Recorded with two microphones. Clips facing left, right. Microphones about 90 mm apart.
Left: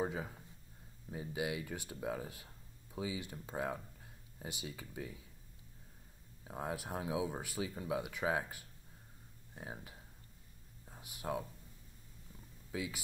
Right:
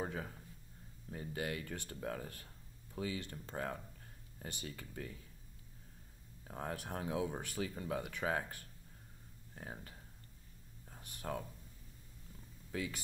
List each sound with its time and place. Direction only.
0.0 s speech: 10° left (ahead or behind)
6.4 s speech: 10° left (ahead or behind)
12.7 s speech: 5° left (ahead or behind)